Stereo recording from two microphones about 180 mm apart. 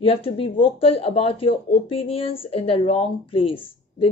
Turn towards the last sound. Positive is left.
turn(degrees=30)  # may be behind; listen again after turning